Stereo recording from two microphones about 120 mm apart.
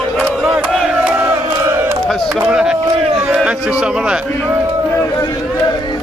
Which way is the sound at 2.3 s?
5° right (ahead or behind).